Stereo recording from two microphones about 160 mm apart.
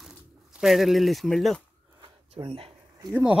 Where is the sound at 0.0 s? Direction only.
Centre (ahead or behind).